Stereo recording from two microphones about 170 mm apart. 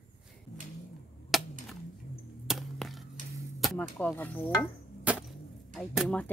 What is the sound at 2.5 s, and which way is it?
Chop, centre (ahead or behind).